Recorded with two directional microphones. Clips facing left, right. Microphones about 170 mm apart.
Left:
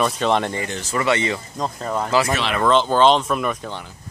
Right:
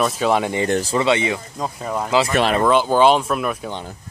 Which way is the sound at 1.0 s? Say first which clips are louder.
Right 2 dB; 15° right (ahead or behind).